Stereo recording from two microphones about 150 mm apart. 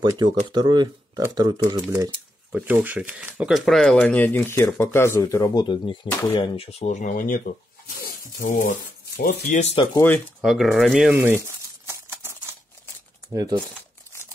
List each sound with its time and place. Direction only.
0.0 s speech: 30° right (ahead or behind)
2.5 s speech: 10° right (ahead or behind); by 9.6 s 90° left
9.6 s speech: 45° left (ahead or behind)
9.9 s speech: 15° left (ahead or behind)
10.4 s speech: centre (ahead or behind)
11.1 s a sound: 15° right (ahead or behind)
13.3 s speech: 25° right (ahead or behind)